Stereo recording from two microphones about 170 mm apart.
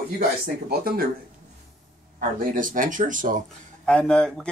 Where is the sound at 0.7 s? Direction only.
60° right (ahead or behind).